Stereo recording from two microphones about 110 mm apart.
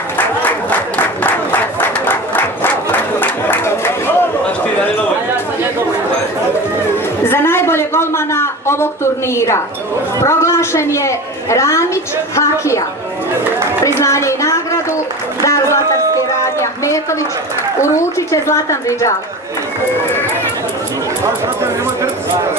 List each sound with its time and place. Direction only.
0.2 s applause: 15° left (ahead or behind)
7.2 s a sound: 20° left (ahead or behind)
10.2 s a woman's voice: 25° left (ahead or behind)
13.8 s a woman's voice: 25° left (ahead or behind)
15.4 s a sound: 30° left (ahead or behind)
18.3 s a woman's voice: 30° left (ahead or behind)